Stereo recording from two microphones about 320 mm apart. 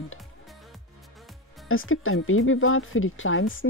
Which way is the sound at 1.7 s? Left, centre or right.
Left.